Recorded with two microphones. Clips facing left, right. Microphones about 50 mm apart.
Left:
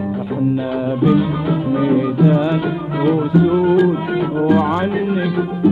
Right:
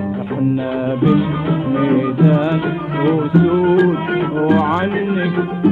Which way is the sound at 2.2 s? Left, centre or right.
Right.